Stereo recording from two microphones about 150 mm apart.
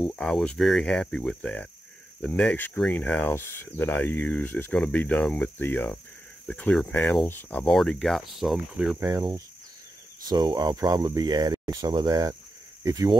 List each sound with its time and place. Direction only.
0.0 s speech: 5° left (ahead or behind)
9.0 s speech: 25° right (ahead or behind)